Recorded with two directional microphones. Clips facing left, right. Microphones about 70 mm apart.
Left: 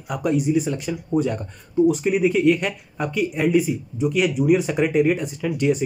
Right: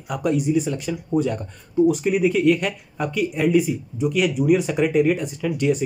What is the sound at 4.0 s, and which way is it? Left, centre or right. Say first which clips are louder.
Speech: even; centre.